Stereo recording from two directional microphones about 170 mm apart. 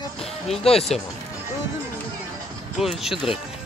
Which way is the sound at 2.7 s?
Centre (ahead or behind).